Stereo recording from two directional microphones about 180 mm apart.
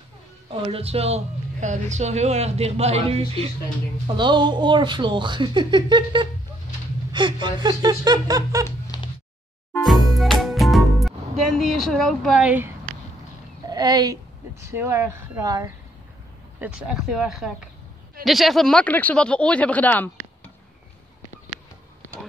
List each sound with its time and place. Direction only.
0.5 s speech: 30° right (ahead or behind)
9.8 s music: centre (ahead or behind)
13.7 s speech: 20° right (ahead or behind)
16.5 s speech: 5° right (ahead or behind); by 20.5 s 10° left (ahead or behind)